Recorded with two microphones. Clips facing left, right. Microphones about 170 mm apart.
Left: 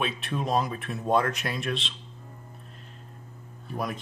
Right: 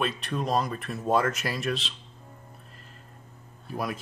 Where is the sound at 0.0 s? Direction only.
Centre (ahead or behind).